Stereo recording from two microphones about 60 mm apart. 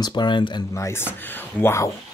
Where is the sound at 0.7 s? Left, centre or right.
Left.